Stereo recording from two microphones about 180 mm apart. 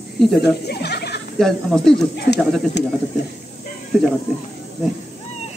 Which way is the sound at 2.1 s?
70° left (ahead or behind).